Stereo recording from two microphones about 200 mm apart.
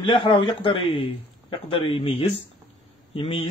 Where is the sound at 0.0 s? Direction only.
25° left (ahead or behind).